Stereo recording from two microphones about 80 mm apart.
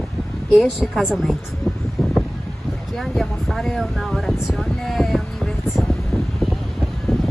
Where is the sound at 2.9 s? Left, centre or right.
Centre.